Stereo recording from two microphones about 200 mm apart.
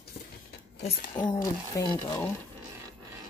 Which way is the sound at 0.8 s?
25° left (ahead or behind).